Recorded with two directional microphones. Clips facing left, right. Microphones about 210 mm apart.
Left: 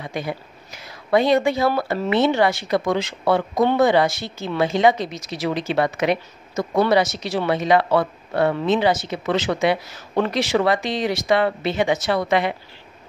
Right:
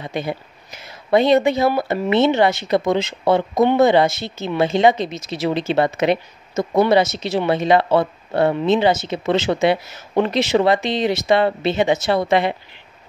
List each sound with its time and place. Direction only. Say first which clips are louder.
0.0 s speech: right 3 dB; 25° right (ahead or behind)